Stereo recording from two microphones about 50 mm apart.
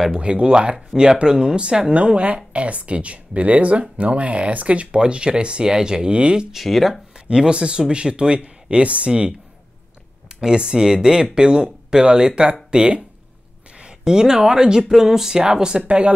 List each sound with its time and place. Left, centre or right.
0.1 s speech: right
6.5 s speech: centre
7.2 s speech: centre
15.9 s speech: right